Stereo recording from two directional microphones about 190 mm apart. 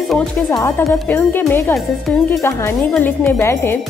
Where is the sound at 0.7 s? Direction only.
10° left (ahead or behind).